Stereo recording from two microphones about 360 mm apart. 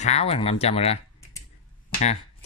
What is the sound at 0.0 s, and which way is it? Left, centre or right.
Speech, centre.